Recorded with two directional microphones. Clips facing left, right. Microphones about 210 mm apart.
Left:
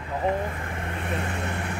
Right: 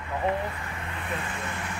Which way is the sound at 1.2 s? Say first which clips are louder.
Left 4 dB; 65° left (ahead or behind).